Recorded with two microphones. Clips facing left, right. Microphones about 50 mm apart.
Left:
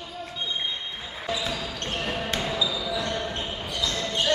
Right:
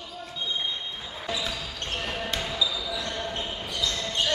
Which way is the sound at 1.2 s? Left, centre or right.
Centre.